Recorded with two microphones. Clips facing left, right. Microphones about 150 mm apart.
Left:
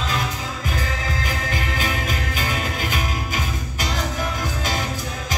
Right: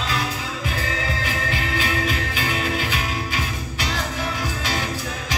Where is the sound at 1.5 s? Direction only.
45° left (ahead or behind).